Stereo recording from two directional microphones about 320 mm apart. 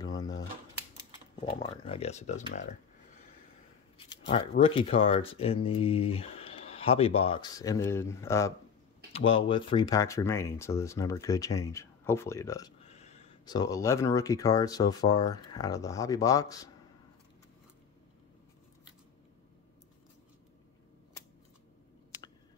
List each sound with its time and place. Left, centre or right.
0.0 s a sound: centre
1.3 s speech: centre
4.0 s speech: centre